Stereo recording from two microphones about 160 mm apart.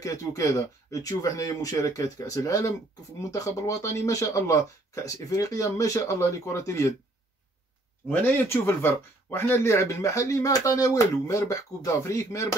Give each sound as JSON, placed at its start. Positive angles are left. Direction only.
{"t": 0.0, "sound": "speech", "side_deg": 20}
{"t": 8.1, "sound": "speech", "side_deg": 15}